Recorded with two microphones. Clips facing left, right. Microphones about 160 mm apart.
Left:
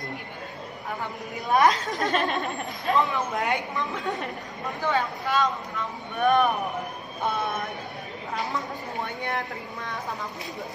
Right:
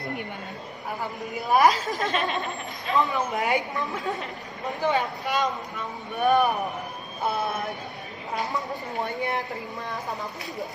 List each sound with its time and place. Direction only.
1.5 s speech: 5° right (ahead or behind)
4.8 s speech: 15° right (ahead or behind)
6.2 s speech: centre (ahead or behind)